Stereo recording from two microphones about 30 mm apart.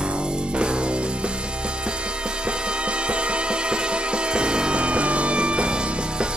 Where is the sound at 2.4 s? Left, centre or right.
Right.